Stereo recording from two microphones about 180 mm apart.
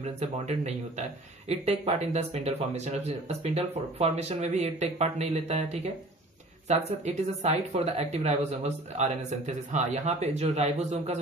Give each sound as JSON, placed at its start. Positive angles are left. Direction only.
{"t": 0.0, "sound": "speech", "side_deg": -40}